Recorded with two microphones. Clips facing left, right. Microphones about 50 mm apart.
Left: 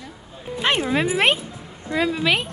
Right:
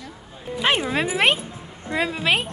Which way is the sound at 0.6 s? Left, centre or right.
Centre.